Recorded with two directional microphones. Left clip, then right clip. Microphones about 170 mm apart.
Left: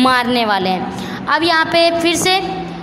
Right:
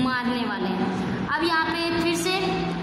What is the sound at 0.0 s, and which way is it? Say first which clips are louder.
A woman's voice: left 12 dB; 55° left (ahead or behind).